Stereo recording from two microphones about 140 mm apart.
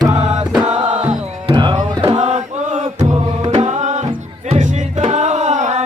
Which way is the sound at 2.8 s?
45° right (ahead or behind).